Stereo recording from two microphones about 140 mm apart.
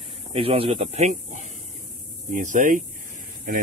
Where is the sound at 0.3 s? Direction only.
40° right (ahead or behind).